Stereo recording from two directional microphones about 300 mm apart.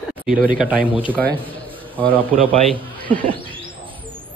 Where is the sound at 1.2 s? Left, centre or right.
Centre.